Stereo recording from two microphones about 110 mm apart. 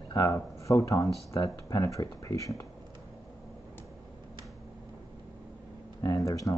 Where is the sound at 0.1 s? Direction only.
30° left (ahead or behind).